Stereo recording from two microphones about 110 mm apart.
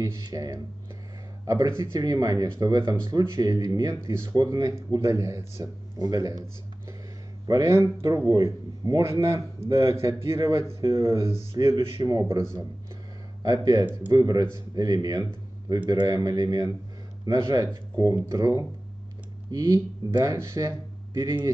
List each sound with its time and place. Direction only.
0.0 s speech: 30° right (ahead or behind)
7.4 s speech: 30° right (ahead or behind)
13.4 s speech: 35° right (ahead or behind)
13.8 s speech: 15° right (ahead or behind)
14.1 s speech: 35° right (ahead or behind)